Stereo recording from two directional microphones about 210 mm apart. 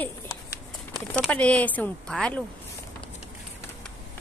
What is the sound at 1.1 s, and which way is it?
Speech, 5° left (ahead or behind).